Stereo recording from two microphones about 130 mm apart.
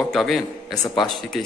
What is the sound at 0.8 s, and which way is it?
Speech, 35° left (ahead or behind).